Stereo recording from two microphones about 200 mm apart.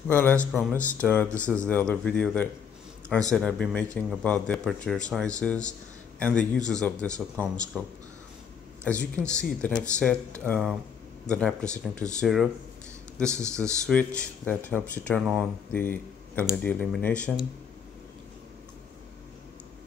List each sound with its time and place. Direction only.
0.1 s speech: 10° left (ahead or behind)
6.7 s speech: 5° left (ahead or behind)
7.1 s speech: 15° right (ahead or behind)
8.8 s speech: 5° left (ahead or behind)
15.8 s speech: 10° left (ahead or behind)